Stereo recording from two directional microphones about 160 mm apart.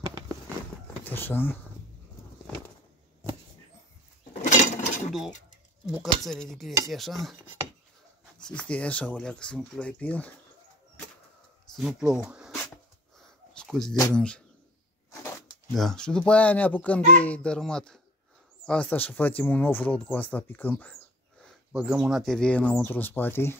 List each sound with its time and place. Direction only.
0.0 s a sound: 25° right (ahead or behind)
1.0 s speech: 15° left (ahead or behind)
4.4 s dishes: 50° left (ahead or behind)
5.9 s dishes: centre (ahead or behind)
8.4 s speech: 5° left (ahead or behind)
11.7 s speech: 5° right (ahead or behind)
13.5 s a sound: 5° left (ahead or behind)
14.1 s speech: 5° left (ahead or behind)
15.7 s speech: 5° left (ahead or behind)
17.2 s dishes: 10° left (ahead or behind)
18.7 s speech: 10° left (ahead or behind)
21.7 s speech: 5° right (ahead or behind); by 23.6 s 15° left (ahead or behind)